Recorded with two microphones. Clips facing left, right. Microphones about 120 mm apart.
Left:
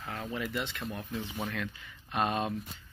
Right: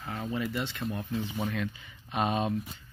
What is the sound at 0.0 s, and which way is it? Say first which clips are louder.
Speech: right 3 dB; 10° right (ahead or behind).